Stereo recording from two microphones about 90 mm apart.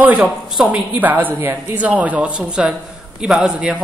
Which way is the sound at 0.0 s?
15° right (ahead or behind).